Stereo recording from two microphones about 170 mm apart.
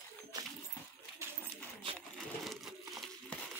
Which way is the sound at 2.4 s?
Centre (ahead or behind).